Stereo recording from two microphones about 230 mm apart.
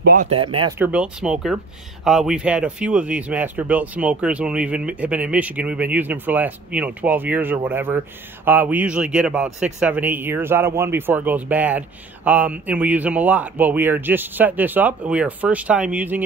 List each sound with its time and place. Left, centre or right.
0.0 s speech: right
0.3 s speech: right
0.7 s speech: centre